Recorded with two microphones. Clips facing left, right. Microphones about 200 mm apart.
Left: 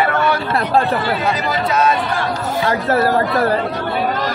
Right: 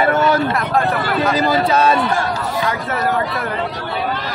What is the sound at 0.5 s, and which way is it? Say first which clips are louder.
Run: left 2 dB; 30° left (ahead or behind).